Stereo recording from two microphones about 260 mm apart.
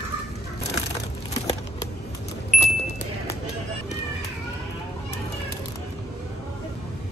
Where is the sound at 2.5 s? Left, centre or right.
Centre.